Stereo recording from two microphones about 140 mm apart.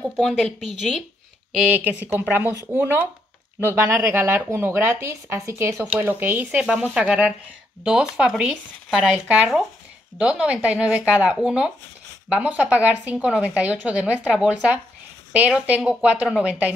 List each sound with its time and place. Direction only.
0.2 s speech: centre (ahead or behind)
1.5 s a woman's voice: 10° right (ahead or behind)